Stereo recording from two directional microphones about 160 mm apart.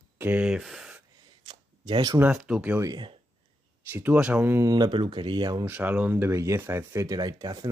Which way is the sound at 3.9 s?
10° right (ahead or behind).